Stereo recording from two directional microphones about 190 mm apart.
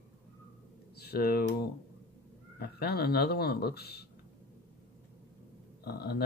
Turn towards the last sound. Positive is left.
turn(degrees=55)  # may be behind; listen again after turning